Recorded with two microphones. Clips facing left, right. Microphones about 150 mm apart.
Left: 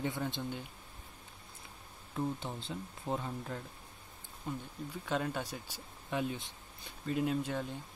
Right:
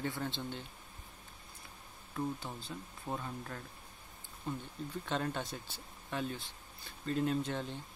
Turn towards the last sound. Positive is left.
turn(degrees=5)  # may be behind; listen again after turning